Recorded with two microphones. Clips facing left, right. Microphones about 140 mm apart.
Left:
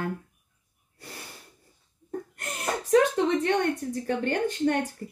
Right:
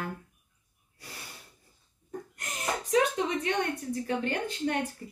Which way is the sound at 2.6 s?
50° left (ahead or behind).